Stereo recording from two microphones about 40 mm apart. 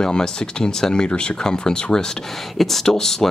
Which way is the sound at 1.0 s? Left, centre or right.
Left.